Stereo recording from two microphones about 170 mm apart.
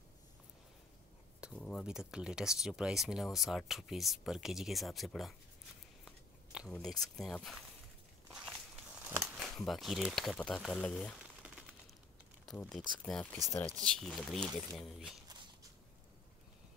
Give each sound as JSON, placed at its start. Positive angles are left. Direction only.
{"t": 1.4, "sound": "speech", "side_deg": 0}
{"t": 6.0, "sound": "chewing", "side_deg": -5}
{"t": 6.7, "sound": "speech", "side_deg": 0}
{"t": 8.3, "sound": "walk", "side_deg": -5}
{"t": 9.0, "sound": "a sound", "side_deg": -10}
{"t": 9.4, "sound": "speech", "side_deg": 0}
{"t": 12.4, "sound": "speech", "side_deg": 0}
{"t": 13.8, "sound": "speech", "side_deg": 0}
{"t": 15.2, "sound": "a sound", "side_deg": -25}